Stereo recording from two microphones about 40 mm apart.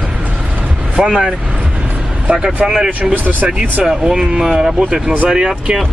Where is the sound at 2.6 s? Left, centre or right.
Centre.